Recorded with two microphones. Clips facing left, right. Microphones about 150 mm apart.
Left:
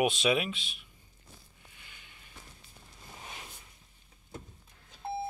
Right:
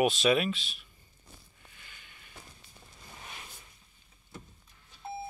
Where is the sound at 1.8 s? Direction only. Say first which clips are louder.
Even; 15° left (ahead or behind).